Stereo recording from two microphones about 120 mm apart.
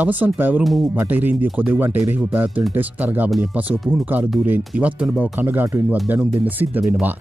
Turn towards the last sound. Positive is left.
turn(degrees=-15)  # may be behind; listen again after turning